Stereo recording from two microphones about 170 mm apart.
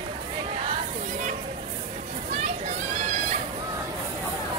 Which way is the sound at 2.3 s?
40° right (ahead or behind).